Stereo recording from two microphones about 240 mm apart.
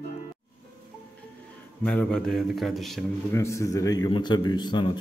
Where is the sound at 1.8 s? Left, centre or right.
Centre.